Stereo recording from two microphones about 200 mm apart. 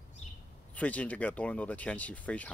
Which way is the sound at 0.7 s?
5° left (ahead or behind).